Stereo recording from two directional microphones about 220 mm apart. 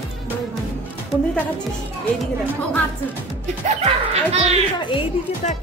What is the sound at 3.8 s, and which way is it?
Speech, 30° right (ahead or behind).